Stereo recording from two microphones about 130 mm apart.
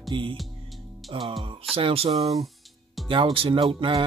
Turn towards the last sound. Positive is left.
turn(degrees=-45)  # may be behind; listen again after turning